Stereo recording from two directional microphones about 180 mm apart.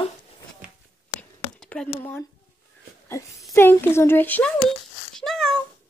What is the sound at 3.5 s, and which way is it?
Speech, 15° left (ahead or behind).